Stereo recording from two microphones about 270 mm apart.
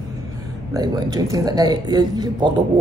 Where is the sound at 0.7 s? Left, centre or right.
Centre.